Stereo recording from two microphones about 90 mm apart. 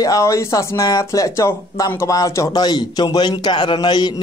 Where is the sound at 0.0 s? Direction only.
40° left (ahead or behind).